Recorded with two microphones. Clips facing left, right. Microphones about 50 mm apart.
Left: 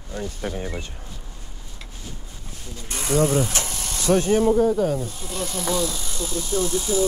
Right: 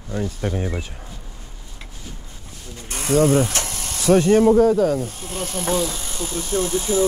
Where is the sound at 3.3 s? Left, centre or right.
Right.